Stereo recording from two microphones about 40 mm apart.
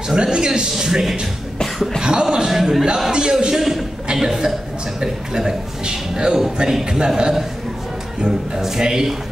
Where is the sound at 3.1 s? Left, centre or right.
Centre.